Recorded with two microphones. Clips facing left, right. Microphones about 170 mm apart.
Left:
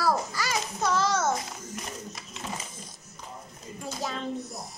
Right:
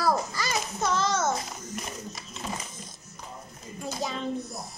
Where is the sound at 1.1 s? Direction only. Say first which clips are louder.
Even; 20° right (ahead or behind).